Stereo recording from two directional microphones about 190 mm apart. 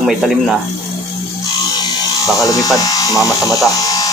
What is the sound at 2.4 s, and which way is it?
Speech, 20° left (ahead or behind).